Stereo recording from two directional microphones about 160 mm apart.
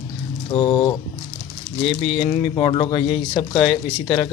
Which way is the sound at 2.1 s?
30° left (ahead or behind).